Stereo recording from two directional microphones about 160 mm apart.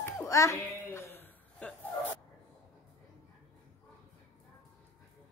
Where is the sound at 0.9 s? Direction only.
15° left (ahead or behind).